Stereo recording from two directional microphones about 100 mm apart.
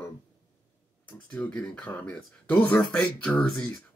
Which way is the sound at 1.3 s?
15° left (ahead or behind).